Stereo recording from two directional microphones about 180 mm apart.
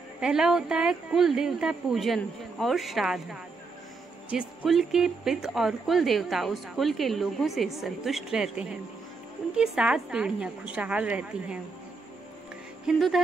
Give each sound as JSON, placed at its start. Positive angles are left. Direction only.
{"t": 0.2, "sound": "speech", "side_deg": -5}
{"t": 12.8, "sound": "speech", "side_deg": 0}